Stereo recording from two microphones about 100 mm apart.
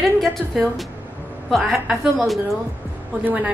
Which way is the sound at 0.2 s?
Centre (ahead or behind).